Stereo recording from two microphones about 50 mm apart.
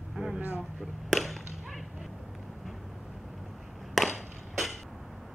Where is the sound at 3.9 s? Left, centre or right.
Centre.